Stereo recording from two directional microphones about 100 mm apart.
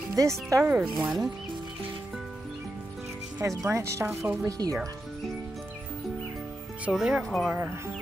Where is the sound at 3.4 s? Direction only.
30° right (ahead or behind).